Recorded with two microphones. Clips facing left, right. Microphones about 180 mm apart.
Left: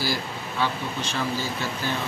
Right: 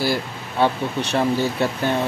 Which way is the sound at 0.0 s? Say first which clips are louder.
Right 5 dB; 60° right (ahead or behind).